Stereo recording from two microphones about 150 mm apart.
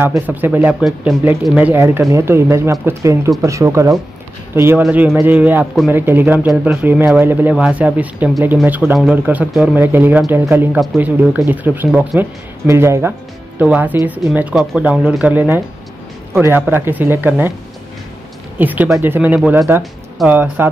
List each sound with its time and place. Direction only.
0.0 s speech: 15° right (ahead or behind)
1.7 s speech: 15° right (ahead or behind)
18.6 s speech: 10° right (ahead or behind)